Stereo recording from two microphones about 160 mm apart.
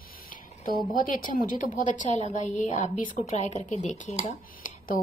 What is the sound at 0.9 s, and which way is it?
Speech, 60° left (ahead or behind).